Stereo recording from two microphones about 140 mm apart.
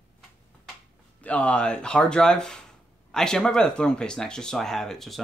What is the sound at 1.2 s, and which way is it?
Speech, 10° left (ahead or behind).